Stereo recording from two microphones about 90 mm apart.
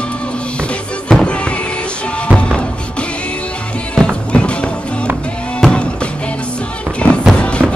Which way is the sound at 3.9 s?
10° left (ahead or behind).